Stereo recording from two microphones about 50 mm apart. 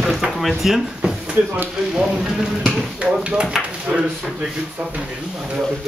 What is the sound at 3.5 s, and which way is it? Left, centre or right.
Speech, centre.